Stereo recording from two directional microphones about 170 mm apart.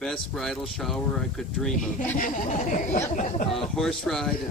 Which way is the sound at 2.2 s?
50° left (ahead or behind).